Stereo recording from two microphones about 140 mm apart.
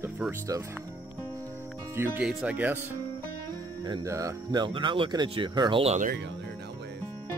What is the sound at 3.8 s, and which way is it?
Speech, 25° right (ahead or behind).